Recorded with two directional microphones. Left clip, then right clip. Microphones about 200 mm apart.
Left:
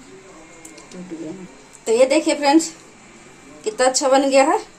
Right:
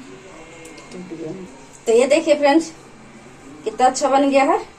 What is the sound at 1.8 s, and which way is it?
Speech, 45° left (ahead or behind).